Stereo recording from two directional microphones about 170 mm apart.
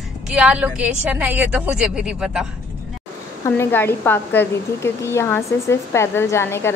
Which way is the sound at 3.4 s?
15° left (ahead or behind).